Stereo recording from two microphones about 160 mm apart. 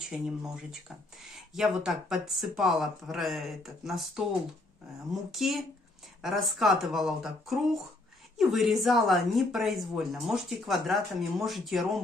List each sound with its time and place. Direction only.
0.4 s speech: 5° right (ahead or behind)
5.3 s speech: centre (ahead or behind)